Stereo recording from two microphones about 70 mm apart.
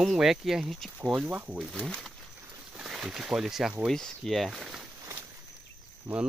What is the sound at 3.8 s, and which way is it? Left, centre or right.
Speech, centre.